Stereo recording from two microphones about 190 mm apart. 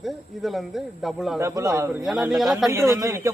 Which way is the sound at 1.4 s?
15° right (ahead or behind).